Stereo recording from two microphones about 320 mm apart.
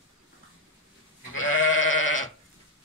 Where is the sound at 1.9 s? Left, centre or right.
Left.